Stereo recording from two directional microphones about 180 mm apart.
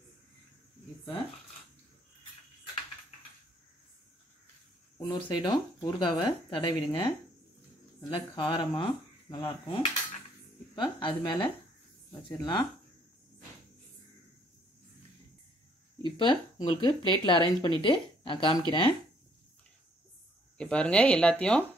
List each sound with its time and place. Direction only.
4.9 s speech: 25° left (ahead or behind)
8.1 s speech: 25° left (ahead or behind)
16.0 s speech: 25° left (ahead or behind)
20.5 s speech: 5° left (ahead or behind)